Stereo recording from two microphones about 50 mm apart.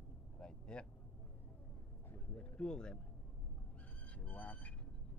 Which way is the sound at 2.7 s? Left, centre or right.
Centre.